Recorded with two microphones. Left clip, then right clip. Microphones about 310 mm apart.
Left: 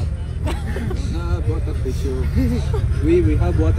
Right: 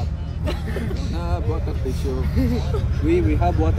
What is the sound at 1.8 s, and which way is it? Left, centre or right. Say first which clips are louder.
Speech: left 2 dB; right.